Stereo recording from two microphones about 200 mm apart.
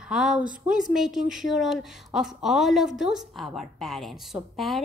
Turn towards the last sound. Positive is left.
turn(degrees=0)  # may be behind; listen again after turning